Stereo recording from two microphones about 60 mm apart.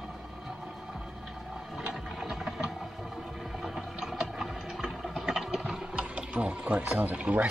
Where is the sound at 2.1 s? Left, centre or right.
Centre.